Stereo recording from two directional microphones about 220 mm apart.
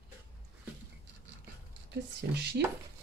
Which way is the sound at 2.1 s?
50° right (ahead or behind).